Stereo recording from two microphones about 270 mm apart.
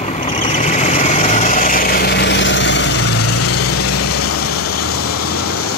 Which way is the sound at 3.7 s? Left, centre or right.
Left.